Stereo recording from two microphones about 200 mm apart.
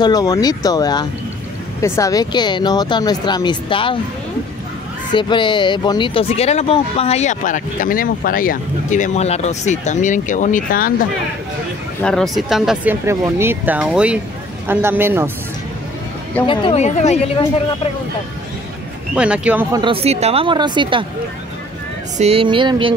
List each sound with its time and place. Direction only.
0.0 s speech: 20° left (ahead or behind)
5.1 s speech: 25° left (ahead or behind); by 10.9 s 45° left (ahead or behind)
12.0 s speech: 5° left (ahead or behind)
13.0 s speech: 15° right (ahead or behind)
16.4 s speech: 30° left (ahead or behind)
19.1 s speech: 5° right (ahead or behind)
19.7 s speech: 25° right (ahead or behind)
22.2 s speech: 30° right (ahead or behind)